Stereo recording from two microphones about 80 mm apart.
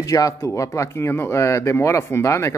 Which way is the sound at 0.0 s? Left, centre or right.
Left.